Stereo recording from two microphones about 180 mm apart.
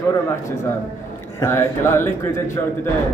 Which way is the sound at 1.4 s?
15° left (ahead or behind).